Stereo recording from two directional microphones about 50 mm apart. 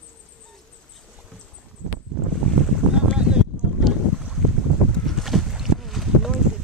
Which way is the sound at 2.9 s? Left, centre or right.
Centre.